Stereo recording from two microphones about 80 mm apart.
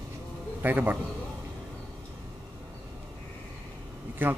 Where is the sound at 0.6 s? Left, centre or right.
Right.